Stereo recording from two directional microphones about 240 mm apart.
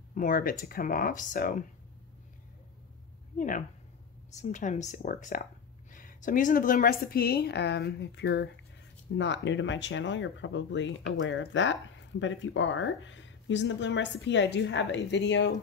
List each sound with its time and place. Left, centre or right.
0.1 s a woman's voice: left
3.3 s a woman's voice: left